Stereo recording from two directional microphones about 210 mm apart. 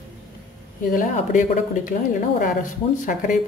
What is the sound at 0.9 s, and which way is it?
Speech, 40° left (ahead or behind).